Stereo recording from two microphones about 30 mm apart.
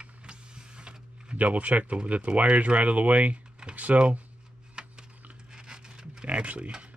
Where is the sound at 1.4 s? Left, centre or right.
Right.